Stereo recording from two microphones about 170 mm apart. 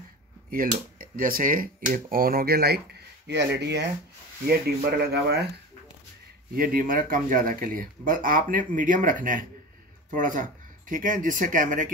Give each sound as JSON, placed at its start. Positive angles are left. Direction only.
{"t": 0.5, "sound": "speech", "side_deg": -55}
{"t": 4.5, "sound": "speech", "side_deg": -70}
{"t": 6.5, "sound": "speech", "side_deg": -60}